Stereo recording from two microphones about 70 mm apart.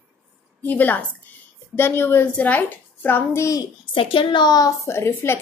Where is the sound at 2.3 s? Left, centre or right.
Left.